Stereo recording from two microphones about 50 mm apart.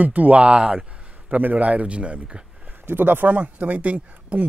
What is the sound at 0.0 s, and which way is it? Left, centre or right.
Speech, right.